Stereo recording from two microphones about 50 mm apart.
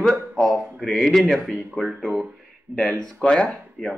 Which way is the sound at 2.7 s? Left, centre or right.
Right.